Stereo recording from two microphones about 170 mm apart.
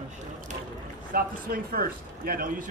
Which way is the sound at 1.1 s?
60° right (ahead or behind).